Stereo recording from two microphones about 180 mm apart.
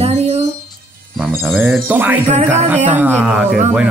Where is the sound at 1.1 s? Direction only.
Centre (ahead or behind).